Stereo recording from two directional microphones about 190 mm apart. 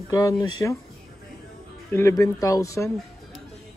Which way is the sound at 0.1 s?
20° left (ahead or behind).